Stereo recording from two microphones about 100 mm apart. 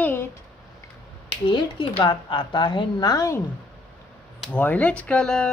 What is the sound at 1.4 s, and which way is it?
Speech, 55° left (ahead or behind).